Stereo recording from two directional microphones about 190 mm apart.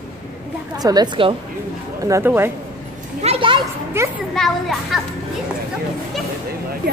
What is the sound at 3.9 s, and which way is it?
Speech, 15° right (ahead or behind).